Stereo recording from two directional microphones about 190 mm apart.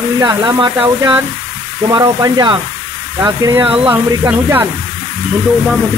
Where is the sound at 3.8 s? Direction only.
10° right (ahead or behind).